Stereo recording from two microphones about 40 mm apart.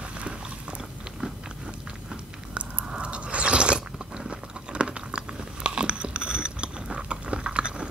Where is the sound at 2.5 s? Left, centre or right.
Right.